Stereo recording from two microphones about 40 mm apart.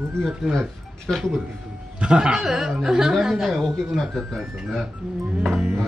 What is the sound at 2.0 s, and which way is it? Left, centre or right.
A woman's voice, right.